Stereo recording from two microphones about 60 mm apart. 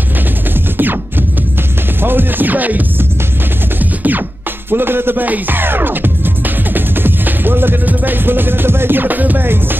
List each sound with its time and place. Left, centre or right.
2.0 s music: right
4.6 s speech: right